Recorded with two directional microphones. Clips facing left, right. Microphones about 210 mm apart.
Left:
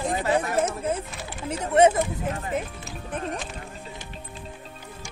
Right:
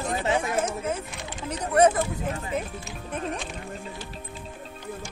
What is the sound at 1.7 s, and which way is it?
Speech, 25° left (ahead or behind).